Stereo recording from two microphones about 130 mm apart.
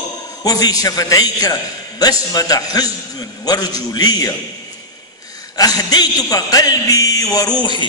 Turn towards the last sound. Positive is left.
turn(degrees=35)  # may be behind; listen again after turning